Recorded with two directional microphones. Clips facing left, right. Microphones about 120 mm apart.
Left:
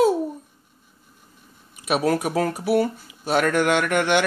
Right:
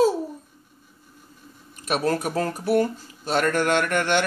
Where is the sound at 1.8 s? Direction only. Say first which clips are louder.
Left 2 dB; 5° left (ahead or behind).